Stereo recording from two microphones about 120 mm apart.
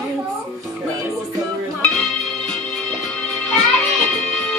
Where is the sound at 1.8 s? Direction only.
10° left (ahead or behind).